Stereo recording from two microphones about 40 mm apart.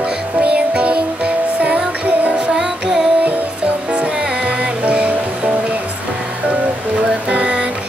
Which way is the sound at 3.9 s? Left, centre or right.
Right.